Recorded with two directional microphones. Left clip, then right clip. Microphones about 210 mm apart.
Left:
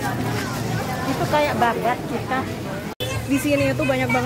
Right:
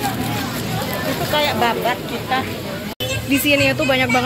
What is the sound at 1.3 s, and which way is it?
Vehicle, 50° left (ahead or behind).